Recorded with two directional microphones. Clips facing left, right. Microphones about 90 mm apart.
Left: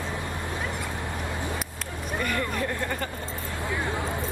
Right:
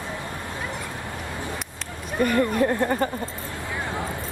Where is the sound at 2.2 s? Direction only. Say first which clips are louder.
Right 9 dB; 35° right (ahead or behind).